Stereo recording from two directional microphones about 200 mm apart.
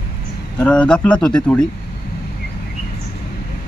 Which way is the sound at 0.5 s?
5° left (ahead or behind).